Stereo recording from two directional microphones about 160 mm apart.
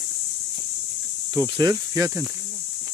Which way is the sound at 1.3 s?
20° right (ahead or behind).